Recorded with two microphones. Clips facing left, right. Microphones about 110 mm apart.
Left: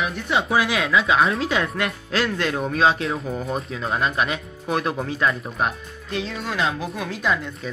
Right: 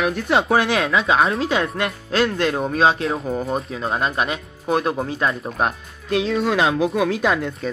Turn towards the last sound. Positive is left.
turn(degrees=-90)